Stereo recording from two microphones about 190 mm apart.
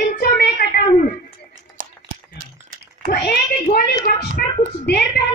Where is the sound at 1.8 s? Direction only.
45° right (ahead or behind).